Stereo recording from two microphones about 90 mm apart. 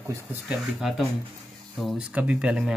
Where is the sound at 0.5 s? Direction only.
5° right (ahead or behind).